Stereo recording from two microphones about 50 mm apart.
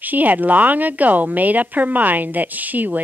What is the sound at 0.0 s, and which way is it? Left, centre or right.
Speech, right.